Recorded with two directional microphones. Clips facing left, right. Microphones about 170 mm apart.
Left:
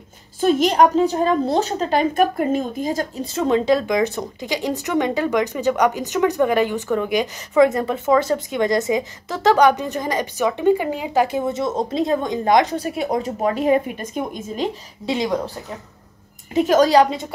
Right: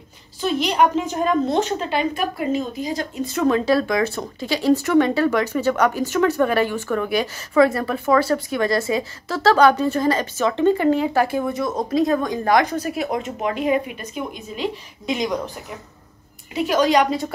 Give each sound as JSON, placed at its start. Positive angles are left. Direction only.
{"t": 0.4, "sound": "a woman's voice", "side_deg": 45}
{"t": 3.3, "sound": "speech", "side_deg": 25}
{"t": 15.0, "sound": "speech", "side_deg": 25}
{"t": 16.5, "sound": "a woman's voice", "side_deg": 45}